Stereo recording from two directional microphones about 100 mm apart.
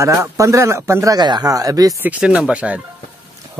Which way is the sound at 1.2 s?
45° right (ahead or behind).